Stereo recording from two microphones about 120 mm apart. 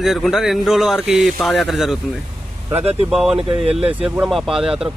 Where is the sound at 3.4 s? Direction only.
55° right (ahead or behind).